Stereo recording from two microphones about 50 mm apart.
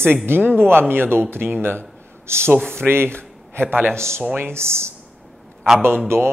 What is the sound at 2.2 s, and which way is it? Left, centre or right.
Speech, right.